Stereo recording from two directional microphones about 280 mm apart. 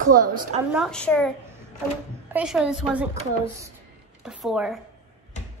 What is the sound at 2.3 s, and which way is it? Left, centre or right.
Speech, centre.